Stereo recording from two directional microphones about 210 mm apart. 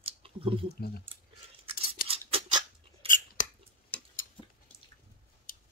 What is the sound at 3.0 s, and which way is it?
Chewing, 40° left (ahead or behind).